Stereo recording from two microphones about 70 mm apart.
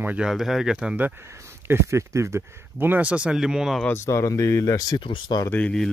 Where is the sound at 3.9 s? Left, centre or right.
Left.